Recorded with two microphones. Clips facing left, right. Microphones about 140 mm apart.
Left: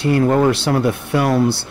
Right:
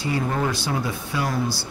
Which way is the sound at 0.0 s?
65° left (ahead or behind).